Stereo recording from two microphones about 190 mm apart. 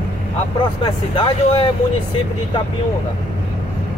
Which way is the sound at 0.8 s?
25° left (ahead or behind).